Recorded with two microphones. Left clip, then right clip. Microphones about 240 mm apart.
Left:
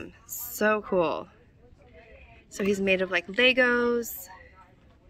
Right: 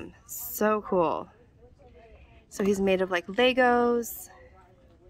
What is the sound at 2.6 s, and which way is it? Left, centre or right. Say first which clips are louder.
Speech: even; centre.